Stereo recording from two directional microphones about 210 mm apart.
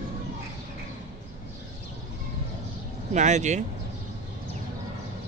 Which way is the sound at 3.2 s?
35° right (ahead or behind).